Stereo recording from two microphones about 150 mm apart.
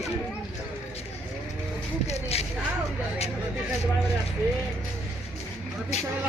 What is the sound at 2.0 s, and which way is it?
Speech, 45° left (ahead or behind).